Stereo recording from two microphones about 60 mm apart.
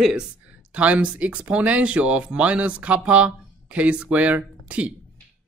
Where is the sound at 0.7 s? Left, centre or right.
Right.